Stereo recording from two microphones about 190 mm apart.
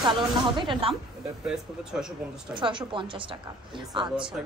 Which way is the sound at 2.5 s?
25° right (ahead or behind).